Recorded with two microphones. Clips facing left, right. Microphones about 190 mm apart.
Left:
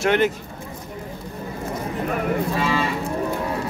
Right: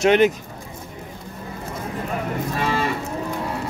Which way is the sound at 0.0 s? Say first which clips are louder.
Right 3 dB; 20° right (ahead or behind).